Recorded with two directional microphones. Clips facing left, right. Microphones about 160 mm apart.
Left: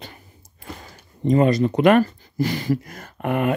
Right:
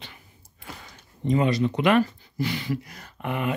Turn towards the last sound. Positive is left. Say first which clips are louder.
# left 6 dB
turn(degrees=50)  # may be behind; listen again after turning